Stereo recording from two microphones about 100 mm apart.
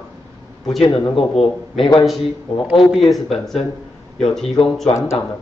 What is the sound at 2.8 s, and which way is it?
Speech, centre (ahead or behind).